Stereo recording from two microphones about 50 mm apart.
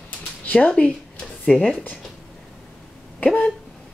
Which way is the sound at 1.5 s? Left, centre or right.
Centre.